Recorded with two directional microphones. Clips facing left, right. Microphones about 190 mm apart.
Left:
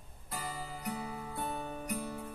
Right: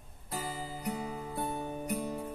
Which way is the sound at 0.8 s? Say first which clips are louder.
Right 3 dB; 20° right (ahead or behind).